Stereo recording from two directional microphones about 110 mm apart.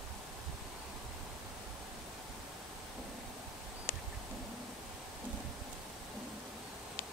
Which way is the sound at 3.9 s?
20° left (ahead or behind).